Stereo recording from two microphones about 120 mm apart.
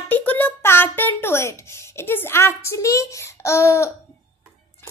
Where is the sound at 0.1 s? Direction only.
15° left (ahead or behind).